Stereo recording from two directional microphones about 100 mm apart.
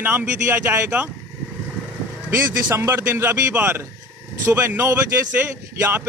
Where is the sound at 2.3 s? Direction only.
25° right (ahead or behind).